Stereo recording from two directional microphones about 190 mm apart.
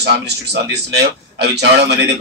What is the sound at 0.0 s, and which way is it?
A man's voice, 60° right (ahead or behind).